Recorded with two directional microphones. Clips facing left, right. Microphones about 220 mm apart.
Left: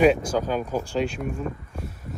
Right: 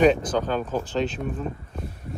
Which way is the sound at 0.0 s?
5° left (ahead or behind).